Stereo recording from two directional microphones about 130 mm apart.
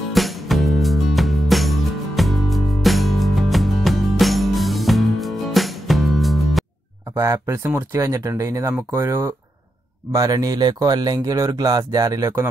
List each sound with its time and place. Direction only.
0.1 s music: centre (ahead or behind)
7.2 s speech: 20° right (ahead or behind)